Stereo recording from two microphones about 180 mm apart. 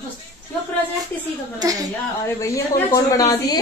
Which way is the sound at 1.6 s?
20° right (ahead or behind).